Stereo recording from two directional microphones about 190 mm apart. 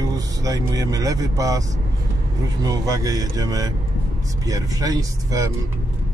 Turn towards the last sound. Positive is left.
turn(degrees=-20)  # may be behind; listen again after turning